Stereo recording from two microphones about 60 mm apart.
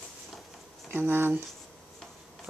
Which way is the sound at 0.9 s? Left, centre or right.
Right.